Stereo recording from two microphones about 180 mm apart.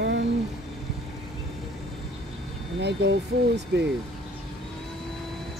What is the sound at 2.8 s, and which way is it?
Speech, 75° right (ahead or behind).